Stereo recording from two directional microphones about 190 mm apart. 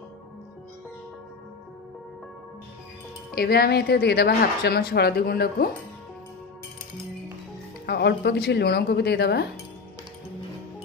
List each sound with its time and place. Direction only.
3.3 s speech: 55° left (ahead or behind)
7.8 s speech: 60° left (ahead or behind)